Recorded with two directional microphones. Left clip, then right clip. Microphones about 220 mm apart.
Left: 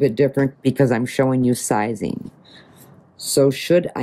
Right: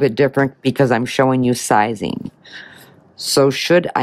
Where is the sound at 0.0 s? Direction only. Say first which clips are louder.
Right 3 dB; 25° right (ahead or behind).